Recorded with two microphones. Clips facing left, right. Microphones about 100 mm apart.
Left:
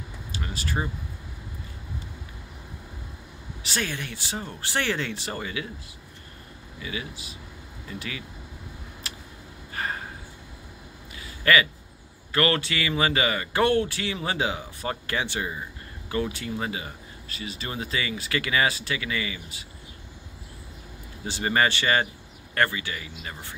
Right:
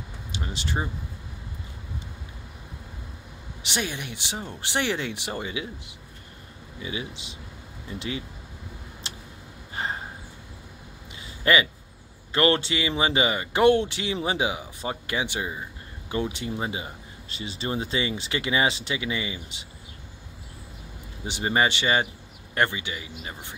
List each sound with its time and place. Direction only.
0.3 s speech: 20° right (ahead or behind)
3.6 s speech: 20° right (ahead or behind)
9.0 s a sound: 25° right (ahead or behind)
11.1 s a sound: 25° right (ahead or behind)
12.3 s speech: 25° right (ahead or behind)
21.3 s speech: 20° right (ahead or behind)